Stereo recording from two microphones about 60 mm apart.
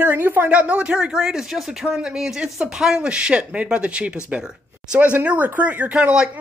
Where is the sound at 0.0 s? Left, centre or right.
Right.